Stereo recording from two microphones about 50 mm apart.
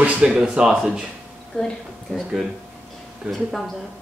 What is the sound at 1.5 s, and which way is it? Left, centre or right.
Speech, centre.